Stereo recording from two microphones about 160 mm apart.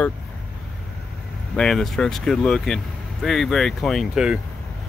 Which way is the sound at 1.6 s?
5° left (ahead or behind).